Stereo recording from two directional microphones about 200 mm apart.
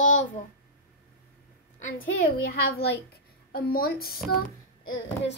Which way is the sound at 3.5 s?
50° left (ahead or behind).